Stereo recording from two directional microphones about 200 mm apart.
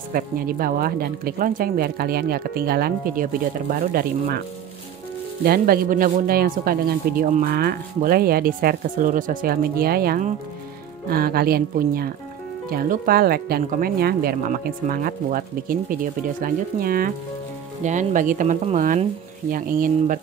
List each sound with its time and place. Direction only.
0.1 s speech: 45° right (ahead or behind)
5.4 s speech: 50° right (ahead or behind)